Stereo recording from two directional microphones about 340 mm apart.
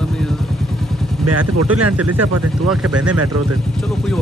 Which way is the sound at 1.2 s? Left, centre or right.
Right.